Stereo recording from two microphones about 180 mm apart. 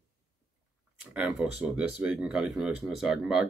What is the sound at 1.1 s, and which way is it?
Speech, 5° right (ahead or behind).